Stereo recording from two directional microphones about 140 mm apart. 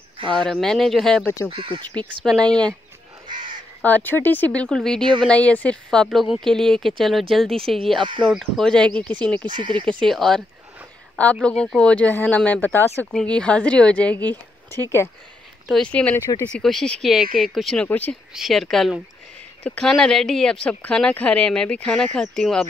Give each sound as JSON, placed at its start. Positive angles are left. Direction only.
{"t": 0.3, "sound": "speech", "side_deg": 5}
{"t": 3.8, "sound": "speech", "side_deg": 10}
{"t": 6.0, "sound": "speech", "side_deg": -5}
{"t": 9.5, "sound": "speech", "side_deg": -35}
{"t": 9.8, "sound": "speech", "side_deg": 5}
{"t": 11.4, "sound": "speech", "side_deg": 5}
{"t": 17.8, "sound": "speech", "side_deg": 10}
{"t": 18.3, "sound": "speech", "side_deg": 0}